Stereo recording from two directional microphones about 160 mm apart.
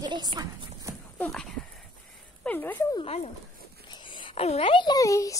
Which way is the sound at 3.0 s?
40° left (ahead or behind).